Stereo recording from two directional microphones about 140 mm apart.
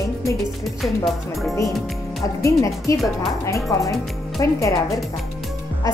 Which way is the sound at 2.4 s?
20° left (ahead or behind).